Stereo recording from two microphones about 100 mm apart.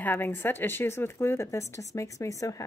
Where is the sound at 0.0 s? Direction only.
20° left (ahead or behind).